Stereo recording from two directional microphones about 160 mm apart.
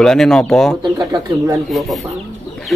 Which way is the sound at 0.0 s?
5° left (ahead or behind).